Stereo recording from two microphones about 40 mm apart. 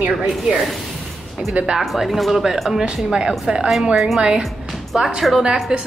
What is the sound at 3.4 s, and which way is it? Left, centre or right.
Speech, centre.